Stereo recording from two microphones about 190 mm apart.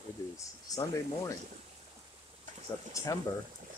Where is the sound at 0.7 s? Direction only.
20° left (ahead or behind).